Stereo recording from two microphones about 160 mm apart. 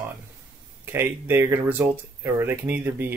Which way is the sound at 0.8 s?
15° right (ahead or behind).